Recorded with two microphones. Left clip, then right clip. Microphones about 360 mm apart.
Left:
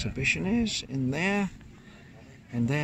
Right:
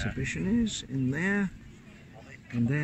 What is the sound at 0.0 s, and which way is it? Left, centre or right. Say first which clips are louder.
Speech: left 6 dB; centre.